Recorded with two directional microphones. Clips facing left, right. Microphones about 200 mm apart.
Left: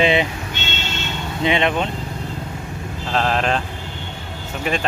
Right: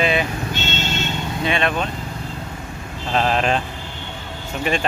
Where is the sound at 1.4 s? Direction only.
20° left (ahead or behind).